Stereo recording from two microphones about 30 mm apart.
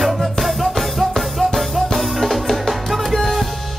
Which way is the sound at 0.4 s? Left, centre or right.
Centre.